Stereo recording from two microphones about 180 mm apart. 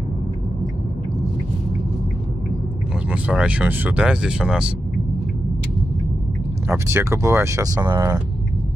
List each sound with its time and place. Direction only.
3.1 s speech: 5° right (ahead or behind)
6.7 s speech: 15° right (ahead or behind)